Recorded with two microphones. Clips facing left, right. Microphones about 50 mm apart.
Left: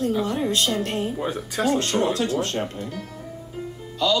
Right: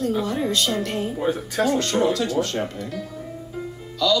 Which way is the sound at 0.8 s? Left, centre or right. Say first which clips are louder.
Even; left.